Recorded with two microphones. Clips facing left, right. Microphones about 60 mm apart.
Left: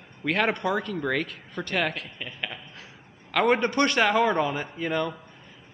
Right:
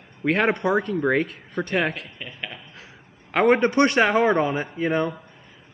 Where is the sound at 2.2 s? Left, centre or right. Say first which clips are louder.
Even; centre.